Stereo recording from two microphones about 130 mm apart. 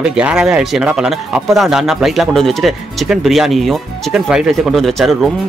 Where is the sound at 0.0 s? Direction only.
5° right (ahead or behind).